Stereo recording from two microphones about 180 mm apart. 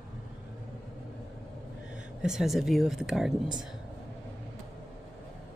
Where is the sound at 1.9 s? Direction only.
5° right (ahead or behind).